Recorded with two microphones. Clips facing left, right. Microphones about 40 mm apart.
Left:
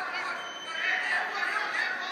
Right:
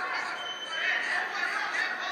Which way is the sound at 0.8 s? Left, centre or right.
Centre.